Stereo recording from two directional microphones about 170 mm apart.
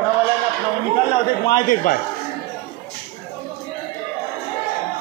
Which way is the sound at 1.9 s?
50° left (ahead or behind).